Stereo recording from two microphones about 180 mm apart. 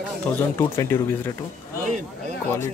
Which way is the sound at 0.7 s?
15° left (ahead or behind).